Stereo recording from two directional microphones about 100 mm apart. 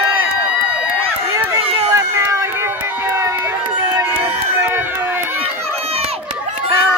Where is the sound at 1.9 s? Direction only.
30° right (ahead or behind).